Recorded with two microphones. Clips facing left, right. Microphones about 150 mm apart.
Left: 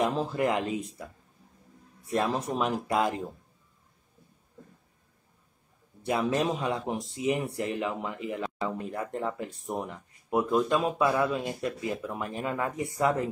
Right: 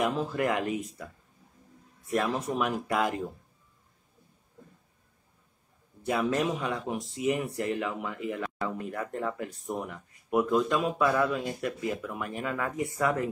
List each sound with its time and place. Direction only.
0.0 s speech: 30° left (ahead or behind)
2.0 s speech: 25° left (ahead or behind)
6.0 s speech: 25° left (ahead or behind)